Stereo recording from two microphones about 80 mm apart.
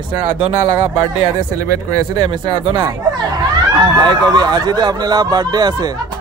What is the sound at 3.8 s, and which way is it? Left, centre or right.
Speech, right.